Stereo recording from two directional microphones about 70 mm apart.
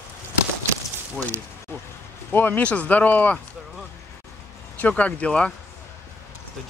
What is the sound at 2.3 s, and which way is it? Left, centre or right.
Speech, left.